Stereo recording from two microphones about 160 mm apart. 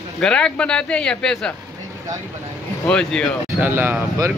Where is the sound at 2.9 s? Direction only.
5° left (ahead or behind).